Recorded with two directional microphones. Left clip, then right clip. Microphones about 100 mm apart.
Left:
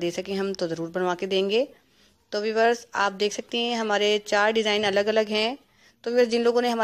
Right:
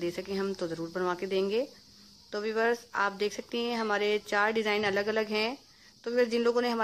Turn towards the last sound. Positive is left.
turn(degrees=25)  # may be behind; listen again after turning